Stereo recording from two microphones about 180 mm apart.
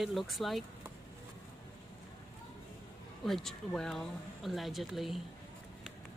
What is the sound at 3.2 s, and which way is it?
Speech, centre (ahead or behind).